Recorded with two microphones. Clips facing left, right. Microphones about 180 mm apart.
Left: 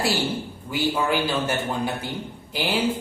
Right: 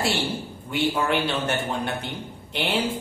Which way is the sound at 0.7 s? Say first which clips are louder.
Even; centre (ahead or behind).